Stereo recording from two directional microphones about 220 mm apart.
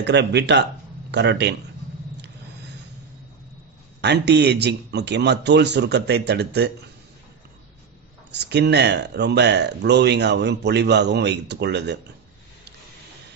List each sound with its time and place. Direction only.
0.0 s speech: 50° right (ahead or behind)
4.0 s speech: 50° right (ahead or behind)
8.3 s speech: 50° right (ahead or behind)